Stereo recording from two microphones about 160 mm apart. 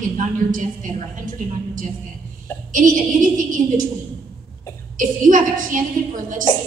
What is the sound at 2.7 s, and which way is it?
Speech, 55° right (ahead or behind).